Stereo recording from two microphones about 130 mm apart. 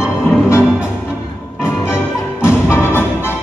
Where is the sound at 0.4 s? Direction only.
20° left (ahead or behind).